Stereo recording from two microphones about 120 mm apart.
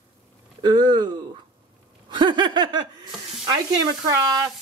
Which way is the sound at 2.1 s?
40° right (ahead or behind).